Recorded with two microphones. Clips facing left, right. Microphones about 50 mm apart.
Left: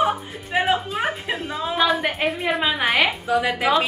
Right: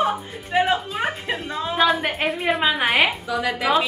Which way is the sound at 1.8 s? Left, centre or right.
Centre.